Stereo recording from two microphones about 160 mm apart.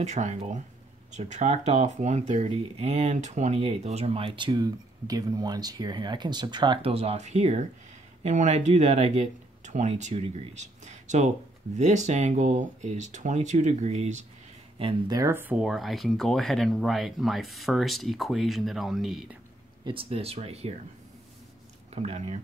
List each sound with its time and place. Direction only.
0.0 s speech: 45° right (ahead or behind)
14.8 s speech: 30° right (ahead or behind); by 19.3 s centre (ahead or behind)
19.8 s speech: 35° right (ahead or behind)
21.9 s speech: 45° right (ahead or behind)